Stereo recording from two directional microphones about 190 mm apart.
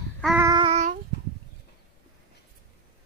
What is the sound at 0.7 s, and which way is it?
Child singing, 35° right (ahead or behind).